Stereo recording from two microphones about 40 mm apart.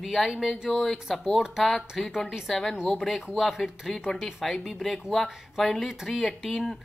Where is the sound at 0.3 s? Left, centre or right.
Centre.